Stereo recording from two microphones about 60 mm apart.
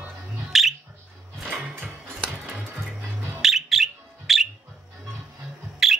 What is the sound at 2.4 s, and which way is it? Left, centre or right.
Music, centre.